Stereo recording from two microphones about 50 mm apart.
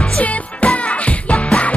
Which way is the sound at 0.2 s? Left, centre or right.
Left.